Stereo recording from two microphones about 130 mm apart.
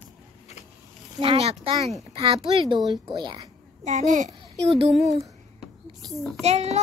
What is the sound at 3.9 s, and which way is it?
Speech, 65° right (ahead or behind).